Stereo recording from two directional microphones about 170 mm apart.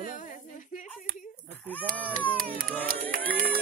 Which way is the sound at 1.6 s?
10° left (ahead or behind).